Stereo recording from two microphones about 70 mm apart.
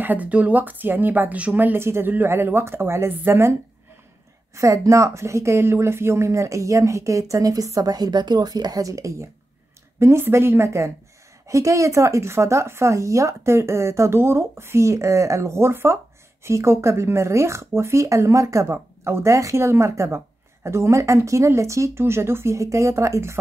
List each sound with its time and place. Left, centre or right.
0.0 s a woman's voice: right
4.6 s speech: right